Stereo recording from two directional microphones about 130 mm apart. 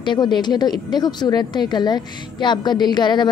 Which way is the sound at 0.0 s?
35° left (ahead or behind).